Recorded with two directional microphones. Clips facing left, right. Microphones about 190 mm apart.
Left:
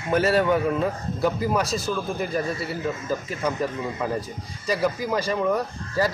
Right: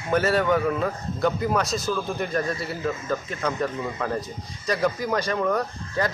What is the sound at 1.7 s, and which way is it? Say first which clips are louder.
Speech: even; 30° left (ahead or behind).